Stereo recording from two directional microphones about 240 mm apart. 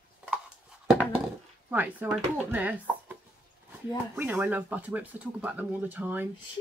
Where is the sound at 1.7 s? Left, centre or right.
Centre.